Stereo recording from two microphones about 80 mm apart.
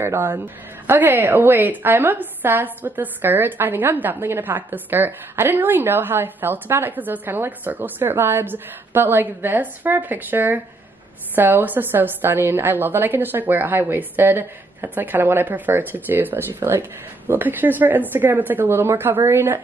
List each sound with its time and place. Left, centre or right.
0.0 s a woman's voice: right